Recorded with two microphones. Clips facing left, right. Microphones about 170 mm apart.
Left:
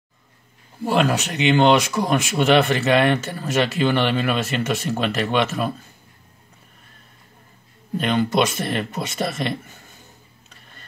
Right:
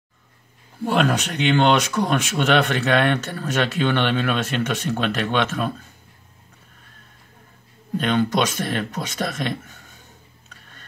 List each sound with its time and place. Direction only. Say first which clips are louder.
0.8 s speech: left 1 dB; 5° left (ahead or behind)
8.0 s speech: left 1 dB; 10° left (ahead or behind)